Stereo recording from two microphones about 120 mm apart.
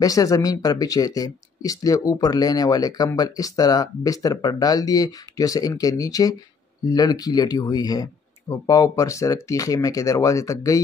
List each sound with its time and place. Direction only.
0.0 s speech: 30° left (ahead or behind)